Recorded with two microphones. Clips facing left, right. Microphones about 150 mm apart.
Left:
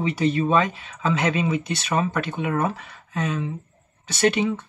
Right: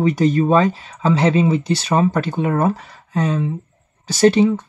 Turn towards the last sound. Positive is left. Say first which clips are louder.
# right 8 dB
turn(degrees=-35)  # may be behind; listen again after turning